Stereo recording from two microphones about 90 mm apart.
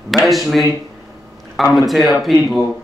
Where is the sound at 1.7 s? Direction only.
Centre (ahead or behind).